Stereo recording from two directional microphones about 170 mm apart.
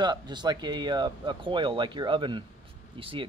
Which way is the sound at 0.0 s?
25° right (ahead or behind).